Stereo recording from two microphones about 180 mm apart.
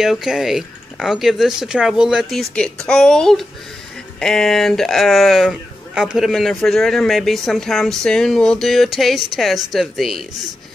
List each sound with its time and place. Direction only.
0.0 s speech: centre (ahead or behind)